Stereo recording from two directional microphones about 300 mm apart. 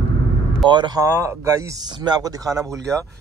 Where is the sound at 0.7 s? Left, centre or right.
Centre.